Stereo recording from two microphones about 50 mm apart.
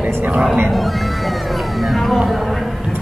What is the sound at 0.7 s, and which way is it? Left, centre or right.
Speech, centre.